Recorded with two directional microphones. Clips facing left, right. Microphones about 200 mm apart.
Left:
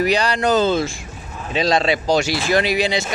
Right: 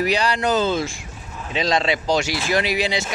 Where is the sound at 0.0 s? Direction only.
5° right (ahead or behind).